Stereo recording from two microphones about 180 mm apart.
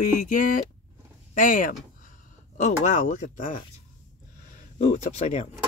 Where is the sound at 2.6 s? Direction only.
40° left (ahead or behind).